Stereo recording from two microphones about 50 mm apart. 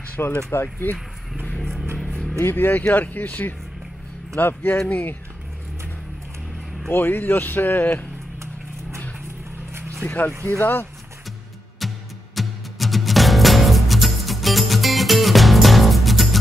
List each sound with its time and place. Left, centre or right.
0.5 s speech: left
1.6 s a sound: centre
2.0 s vehicle: centre
2.4 s speech: left
4.7 s speech: left
6.9 s speech: left
10.0 s speech: left
11.8 s music: centre